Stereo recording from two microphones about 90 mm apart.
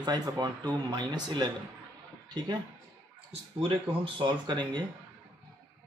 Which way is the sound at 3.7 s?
65° right (ahead or behind).